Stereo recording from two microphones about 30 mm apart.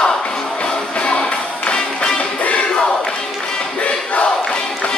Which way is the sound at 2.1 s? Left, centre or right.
Left.